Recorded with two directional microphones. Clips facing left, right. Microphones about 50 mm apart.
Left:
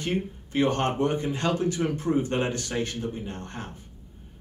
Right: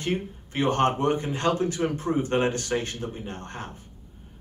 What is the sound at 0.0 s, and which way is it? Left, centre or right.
Speech, right.